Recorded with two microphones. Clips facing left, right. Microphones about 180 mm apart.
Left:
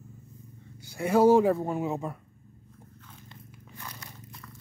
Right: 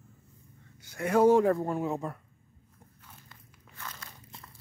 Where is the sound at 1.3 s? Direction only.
5° left (ahead or behind).